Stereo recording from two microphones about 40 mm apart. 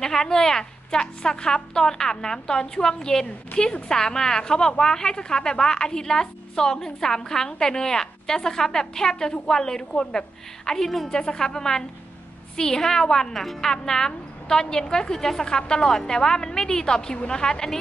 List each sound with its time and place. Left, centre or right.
0.0 s a woman's voice: centre
11.1 s a woman's voice: centre